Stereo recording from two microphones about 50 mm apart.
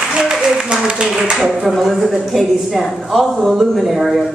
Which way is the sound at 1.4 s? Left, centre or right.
Centre.